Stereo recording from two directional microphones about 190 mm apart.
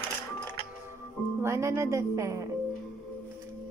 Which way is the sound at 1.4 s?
15° right (ahead or behind).